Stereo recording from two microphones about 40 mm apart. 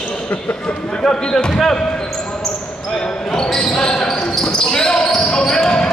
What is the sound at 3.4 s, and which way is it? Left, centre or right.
Basketball bounce, centre.